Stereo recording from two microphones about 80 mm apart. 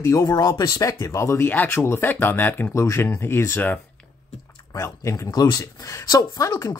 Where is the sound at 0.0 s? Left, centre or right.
Left.